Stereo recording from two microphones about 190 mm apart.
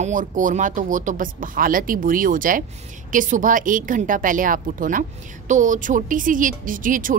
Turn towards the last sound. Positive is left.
turn(degrees=-45)  # may be behind; listen again after turning